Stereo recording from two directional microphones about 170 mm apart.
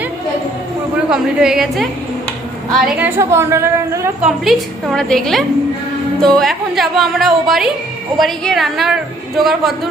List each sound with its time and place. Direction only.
1.1 s a woman's voice: 5° right (ahead or behind)
3.0 s a woman's voice: 15° right (ahead or behind)
4.3 s a woman's voice: centre (ahead or behind)